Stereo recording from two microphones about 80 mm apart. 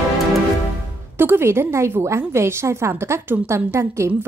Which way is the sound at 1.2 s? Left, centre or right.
Right.